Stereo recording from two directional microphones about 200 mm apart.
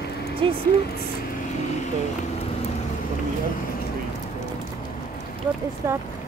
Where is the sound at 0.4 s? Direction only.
25° right (ahead or behind).